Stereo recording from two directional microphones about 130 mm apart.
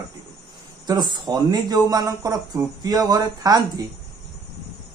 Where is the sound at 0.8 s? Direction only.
35° right (ahead or behind).